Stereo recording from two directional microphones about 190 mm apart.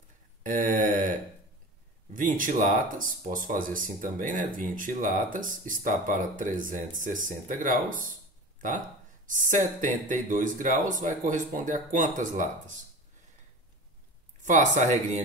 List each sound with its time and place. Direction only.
0.5 s a sound: 45° right (ahead or behind)
2.1 s speech: 45° right (ahead or behind)
14.4 s speech: 40° right (ahead or behind)